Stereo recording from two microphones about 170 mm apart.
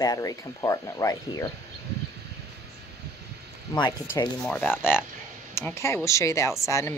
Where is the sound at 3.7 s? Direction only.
25° left (ahead or behind).